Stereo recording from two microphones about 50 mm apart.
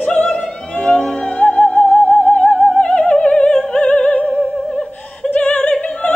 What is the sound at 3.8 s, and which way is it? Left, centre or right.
Opera, left.